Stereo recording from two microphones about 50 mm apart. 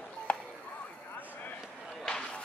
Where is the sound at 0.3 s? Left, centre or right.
Left.